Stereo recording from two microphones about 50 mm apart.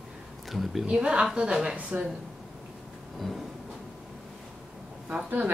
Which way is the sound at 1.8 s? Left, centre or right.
Right.